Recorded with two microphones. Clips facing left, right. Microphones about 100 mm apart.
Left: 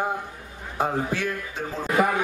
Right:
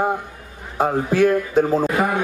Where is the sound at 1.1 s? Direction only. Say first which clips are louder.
Right 13 dB; 45° right (ahead or behind).